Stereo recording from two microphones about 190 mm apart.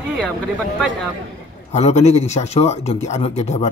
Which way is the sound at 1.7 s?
35° left (ahead or behind).